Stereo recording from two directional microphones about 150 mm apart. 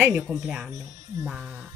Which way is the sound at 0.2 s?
5° right (ahead or behind).